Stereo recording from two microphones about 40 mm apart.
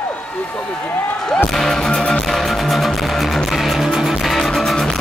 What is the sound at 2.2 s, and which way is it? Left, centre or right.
Music, centre.